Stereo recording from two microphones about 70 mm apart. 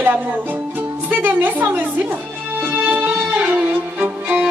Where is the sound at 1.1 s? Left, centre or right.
Right.